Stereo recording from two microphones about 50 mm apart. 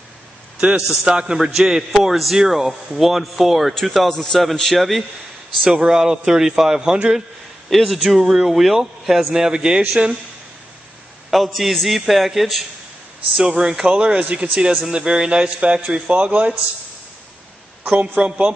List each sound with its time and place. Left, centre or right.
0.6 s a man's voice: centre
5.8 s a man's voice: centre
7.7 s a man's voice: centre
11.2 s a man's voice: centre
13.4 s a man's voice: centre
17.8 s a man's voice: right